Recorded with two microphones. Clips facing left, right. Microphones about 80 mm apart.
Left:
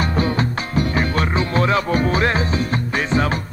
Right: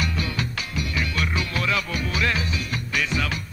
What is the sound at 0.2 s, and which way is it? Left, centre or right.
Music, left.